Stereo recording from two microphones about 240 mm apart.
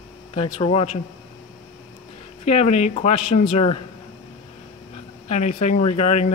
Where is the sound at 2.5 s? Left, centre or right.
Left.